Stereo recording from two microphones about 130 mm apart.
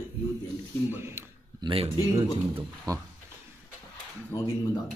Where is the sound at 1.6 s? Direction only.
45° right (ahead or behind).